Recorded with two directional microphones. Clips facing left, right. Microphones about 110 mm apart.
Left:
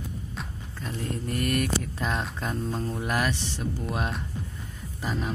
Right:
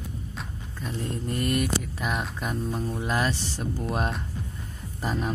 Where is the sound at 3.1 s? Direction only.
30° right (ahead or behind).